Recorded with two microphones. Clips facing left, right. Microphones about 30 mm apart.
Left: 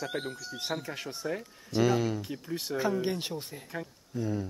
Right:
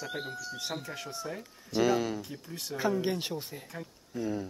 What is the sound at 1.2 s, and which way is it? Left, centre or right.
Speech, centre.